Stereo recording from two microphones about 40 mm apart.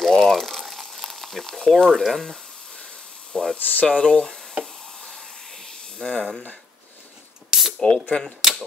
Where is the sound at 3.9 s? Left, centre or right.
Left.